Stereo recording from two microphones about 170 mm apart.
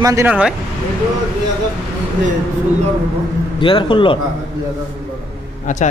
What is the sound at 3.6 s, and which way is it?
Speech, 30° left (ahead or behind).